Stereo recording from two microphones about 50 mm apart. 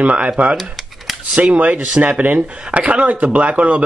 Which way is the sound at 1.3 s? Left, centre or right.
Right.